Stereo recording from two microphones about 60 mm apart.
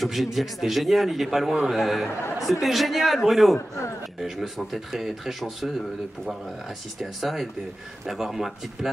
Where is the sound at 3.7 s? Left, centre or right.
Left.